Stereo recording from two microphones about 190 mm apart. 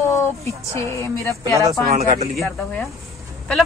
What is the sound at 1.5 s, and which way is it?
Speech, 20° right (ahead or behind).